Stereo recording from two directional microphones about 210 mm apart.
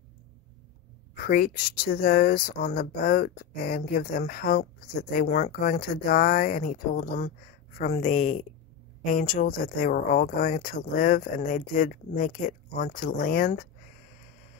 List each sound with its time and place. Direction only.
1.2 s speech: 45° left (ahead or behind)